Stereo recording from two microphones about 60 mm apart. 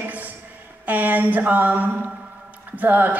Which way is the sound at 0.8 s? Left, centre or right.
Right.